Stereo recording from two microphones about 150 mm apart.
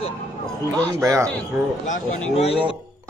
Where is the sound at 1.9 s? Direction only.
45° left (ahead or behind).